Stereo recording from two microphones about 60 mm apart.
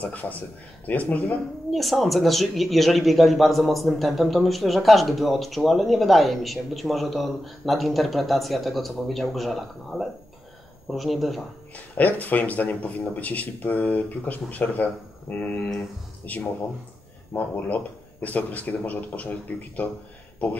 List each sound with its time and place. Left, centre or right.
0.0 s speech: left
1.7 s speech: centre
11.7 s speech: left
17.3 s speech: left